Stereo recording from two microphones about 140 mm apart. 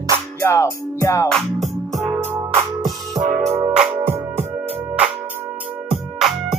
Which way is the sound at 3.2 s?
50° right (ahead or behind).